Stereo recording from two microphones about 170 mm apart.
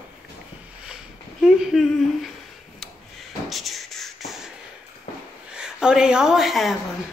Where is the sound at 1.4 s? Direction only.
Centre (ahead or behind).